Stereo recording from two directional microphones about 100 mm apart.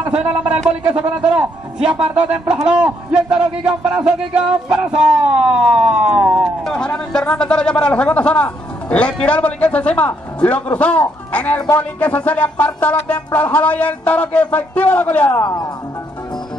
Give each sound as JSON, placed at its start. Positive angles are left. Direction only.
{"t": 0.1, "sound": "a man's voice", "side_deg": -10}
{"t": 6.6, "sound": "a man's voice", "side_deg": 10}
{"t": 15.3, "sound": "speech", "side_deg": 40}